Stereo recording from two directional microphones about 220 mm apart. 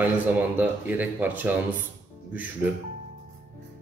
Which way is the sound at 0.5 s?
10° right (ahead or behind).